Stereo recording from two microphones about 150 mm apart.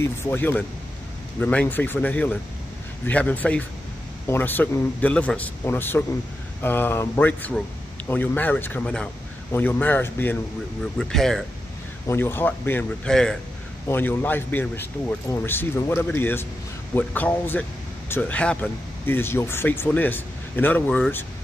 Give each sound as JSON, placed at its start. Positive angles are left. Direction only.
{"t": 0.0, "sound": "speech", "side_deg": 15}
{"t": 11.0, "sound": "speech", "side_deg": 5}
{"t": 12.1, "sound": "speech", "side_deg": 15}